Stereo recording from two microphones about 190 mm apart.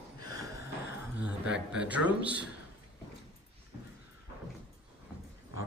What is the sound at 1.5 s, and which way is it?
Speech, 5° right (ahead or behind).